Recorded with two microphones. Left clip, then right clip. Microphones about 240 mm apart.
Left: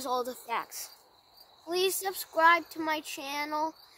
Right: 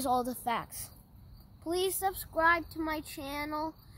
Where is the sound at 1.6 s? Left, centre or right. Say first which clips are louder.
Left 1 dB; centre.